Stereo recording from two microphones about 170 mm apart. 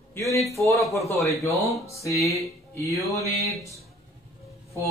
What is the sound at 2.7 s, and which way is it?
Music, 20° left (ahead or behind).